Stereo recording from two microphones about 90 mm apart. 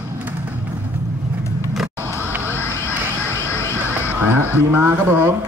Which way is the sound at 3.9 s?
20° right (ahead or behind).